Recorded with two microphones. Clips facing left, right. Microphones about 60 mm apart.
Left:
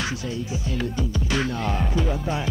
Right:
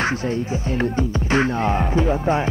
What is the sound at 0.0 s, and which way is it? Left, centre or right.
Speech, right.